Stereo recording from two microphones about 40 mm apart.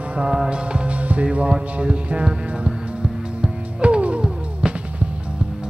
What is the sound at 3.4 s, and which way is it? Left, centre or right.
Music, right.